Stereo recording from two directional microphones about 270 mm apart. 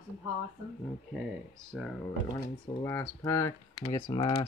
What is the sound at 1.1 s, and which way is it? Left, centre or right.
Speech, centre.